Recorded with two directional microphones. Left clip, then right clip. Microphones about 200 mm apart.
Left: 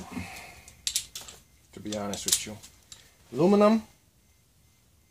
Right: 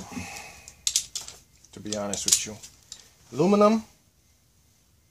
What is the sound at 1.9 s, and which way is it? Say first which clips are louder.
Speech: right 4 dB; 15° right (ahead or behind).